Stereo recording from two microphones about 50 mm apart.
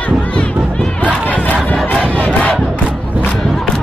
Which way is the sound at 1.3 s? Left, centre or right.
Left.